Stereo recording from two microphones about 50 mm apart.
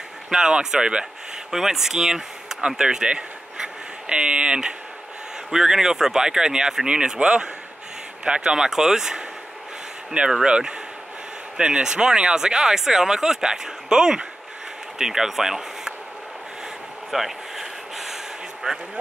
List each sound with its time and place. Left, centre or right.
0.3 s speech: centre
10.4 s speech: centre
17.1 s snort: centre